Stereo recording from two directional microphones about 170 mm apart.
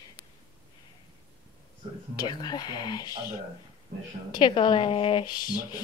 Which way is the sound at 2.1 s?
25° left (ahead or behind).